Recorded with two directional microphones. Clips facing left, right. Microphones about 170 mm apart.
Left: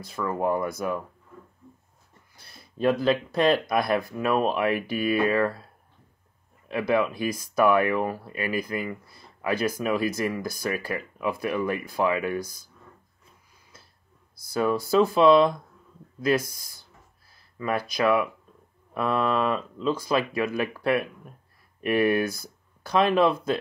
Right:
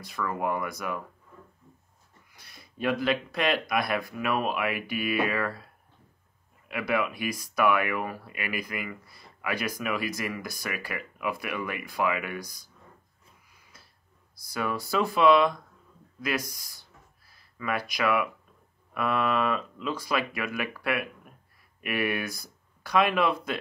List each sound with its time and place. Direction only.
0.0 s speech: 25° left (ahead or behind)
2.3 s a sound: 30° left (ahead or behind)
3.3 s speech: 30° left (ahead or behind)
6.7 s speech: 30° left (ahead or behind)
14.3 s speech: 30° left (ahead or behind)
17.6 s speech: 30° left (ahead or behind)